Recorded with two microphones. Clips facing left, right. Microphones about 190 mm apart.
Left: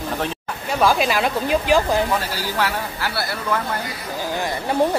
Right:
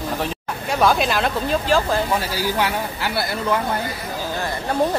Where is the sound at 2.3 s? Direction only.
15° right (ahead or behind).